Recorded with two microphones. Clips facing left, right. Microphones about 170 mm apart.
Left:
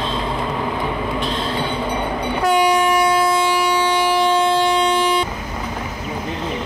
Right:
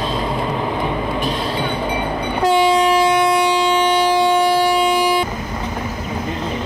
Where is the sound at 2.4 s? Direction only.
25° right (ahead or behind); by 5.2 s 10° right (ahead or behind).